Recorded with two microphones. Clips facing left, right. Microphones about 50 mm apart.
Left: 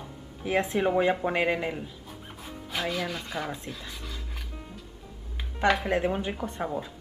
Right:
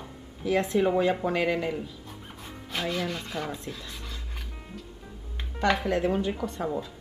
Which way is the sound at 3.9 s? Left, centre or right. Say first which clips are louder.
Left 1 dB; centre.